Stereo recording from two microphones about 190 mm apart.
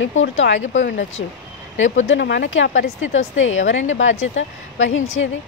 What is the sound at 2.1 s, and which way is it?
A woman's voice, 70° left (ahead or behind).